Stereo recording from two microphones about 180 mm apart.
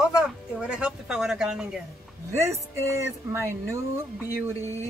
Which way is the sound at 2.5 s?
15° right (ahead or behind).